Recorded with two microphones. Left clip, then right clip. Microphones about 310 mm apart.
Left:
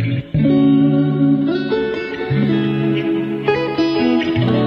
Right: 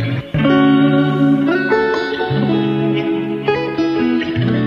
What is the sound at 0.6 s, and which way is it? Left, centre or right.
Music, right.